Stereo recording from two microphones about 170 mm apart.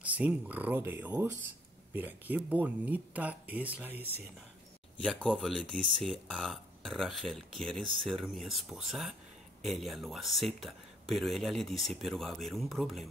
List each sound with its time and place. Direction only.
0.0 s speech: 10° right (ahead or behind)
5.0 s speech: 5° left (ahead or behind)
7.8 s speech: 30° right (ahead or behind)
8.1 s speech: centre (ahead or behind)